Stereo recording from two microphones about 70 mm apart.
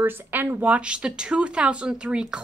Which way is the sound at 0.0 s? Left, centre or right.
Right.